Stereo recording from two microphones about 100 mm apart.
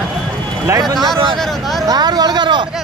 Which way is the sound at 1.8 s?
40° right (ahead or behind).